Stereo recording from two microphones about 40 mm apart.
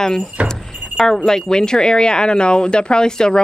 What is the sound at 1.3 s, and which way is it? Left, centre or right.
Speech, centre.